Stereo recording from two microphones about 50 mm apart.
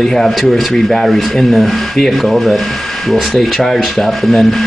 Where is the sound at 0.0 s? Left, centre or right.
Centre.